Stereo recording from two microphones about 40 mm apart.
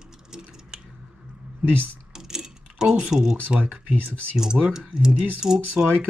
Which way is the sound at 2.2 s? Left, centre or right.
Centre.